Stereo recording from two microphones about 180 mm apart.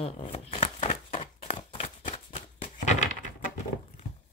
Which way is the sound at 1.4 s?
30° left (ahead or behind).